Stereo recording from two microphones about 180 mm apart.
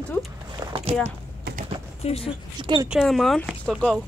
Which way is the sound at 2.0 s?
35° left (ahead or behind).